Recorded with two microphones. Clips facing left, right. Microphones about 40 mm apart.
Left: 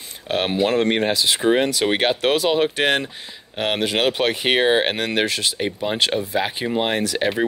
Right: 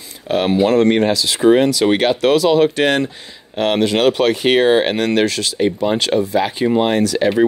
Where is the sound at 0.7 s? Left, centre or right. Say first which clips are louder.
Right 6 dB; centre.